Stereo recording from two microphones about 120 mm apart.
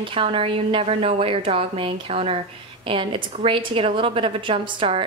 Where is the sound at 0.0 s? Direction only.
50° right (ahead or behind).